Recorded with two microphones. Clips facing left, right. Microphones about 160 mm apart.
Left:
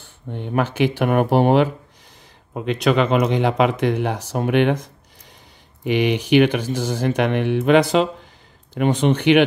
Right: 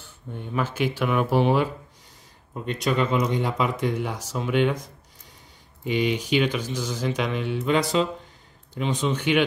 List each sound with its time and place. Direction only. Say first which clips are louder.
0.0 s speech: left 6 dB; 65° left (ahead or behind)
2.5 s speech: left 7 dB; 80° left
5.9 s speech: left 5 dB; 70° left (ahead or behind)